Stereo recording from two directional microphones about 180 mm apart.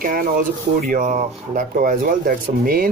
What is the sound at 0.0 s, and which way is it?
Speech, 50° right (ahead or behind).